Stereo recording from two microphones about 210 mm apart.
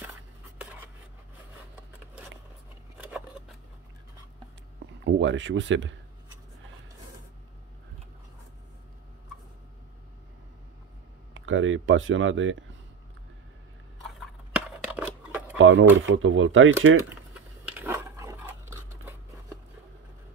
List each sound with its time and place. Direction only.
0.6 s a sound: 5° right (ahead or behind)
5.0 s speech: 60° right (ahead or behind)
11.3 s speech: 65° right (ahead or behind)
14.5 s a sound: 5° right (ahead or behind)
15.5 s speech: 65° right (ahead or behind)
17.3 s dog: 5° right (ahead or behind)